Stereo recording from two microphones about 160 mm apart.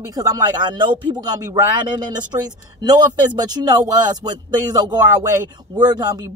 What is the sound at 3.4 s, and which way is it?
Speech, 25° right (ahead or behind).